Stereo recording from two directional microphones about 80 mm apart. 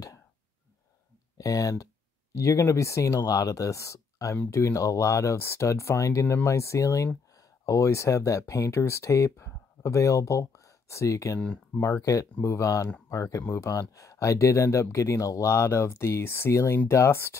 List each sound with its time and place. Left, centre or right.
1.4 s speech: left
11.3 s speech: left
11.8 s speech: left